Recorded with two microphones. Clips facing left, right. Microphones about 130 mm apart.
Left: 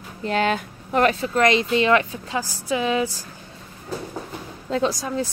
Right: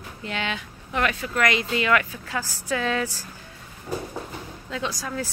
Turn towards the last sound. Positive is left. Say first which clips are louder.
# left 5 dB
turn(degrees=20)  # may be behind; listen again after turning